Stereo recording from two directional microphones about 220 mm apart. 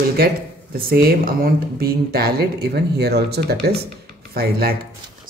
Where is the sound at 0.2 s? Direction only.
45° right (ahead or behind).